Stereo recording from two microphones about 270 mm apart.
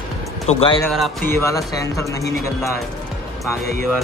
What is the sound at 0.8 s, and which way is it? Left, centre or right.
Speech, centre.